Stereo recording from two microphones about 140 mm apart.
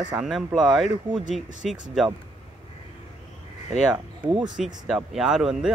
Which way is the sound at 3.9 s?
30° right (ahead or behind).